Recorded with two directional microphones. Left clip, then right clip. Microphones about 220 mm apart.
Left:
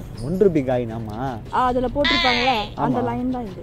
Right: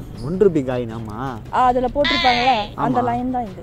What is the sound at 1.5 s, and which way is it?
Speech, 20° right (ahead or behind).